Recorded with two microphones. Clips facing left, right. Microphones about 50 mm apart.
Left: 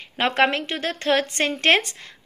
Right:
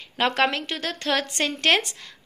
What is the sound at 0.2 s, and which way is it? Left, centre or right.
A woman's voice, left.